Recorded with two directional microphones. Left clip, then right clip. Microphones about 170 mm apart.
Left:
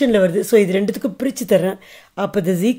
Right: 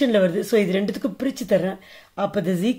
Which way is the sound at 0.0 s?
35° left (ahead or behind).